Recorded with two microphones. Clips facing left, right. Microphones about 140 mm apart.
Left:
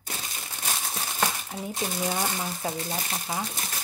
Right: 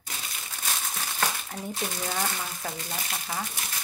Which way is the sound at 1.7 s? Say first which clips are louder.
Left 3 dB; 15° left (ahead or behind).